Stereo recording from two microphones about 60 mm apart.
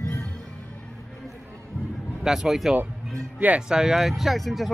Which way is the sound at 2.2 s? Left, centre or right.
Centre.